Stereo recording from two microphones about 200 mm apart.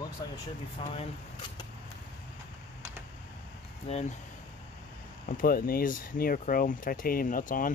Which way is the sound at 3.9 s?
30° left (ahead or behind).